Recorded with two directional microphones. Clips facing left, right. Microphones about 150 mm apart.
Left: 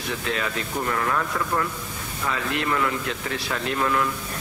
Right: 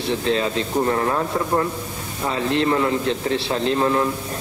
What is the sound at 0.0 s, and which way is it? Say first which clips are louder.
Speech: right 7 dB; 30° right (ahead or behind).